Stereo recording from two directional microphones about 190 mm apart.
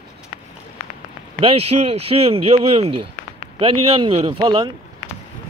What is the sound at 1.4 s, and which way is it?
Speech, 30° right (ahead or behind).